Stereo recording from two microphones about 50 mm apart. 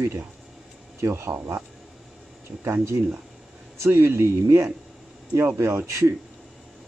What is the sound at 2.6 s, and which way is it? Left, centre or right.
Speech, right.